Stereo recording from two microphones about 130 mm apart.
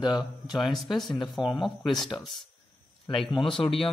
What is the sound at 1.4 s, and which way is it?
Speech, 35° left (ahead or behind).